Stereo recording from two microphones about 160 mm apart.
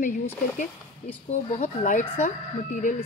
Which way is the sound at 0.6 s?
45° left (ahead or behind).